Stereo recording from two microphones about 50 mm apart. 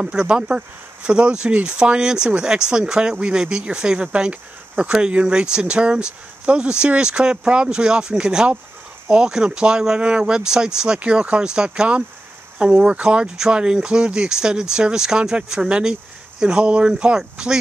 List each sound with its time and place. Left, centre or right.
0.0 s speech: centre
11.0 s speech: right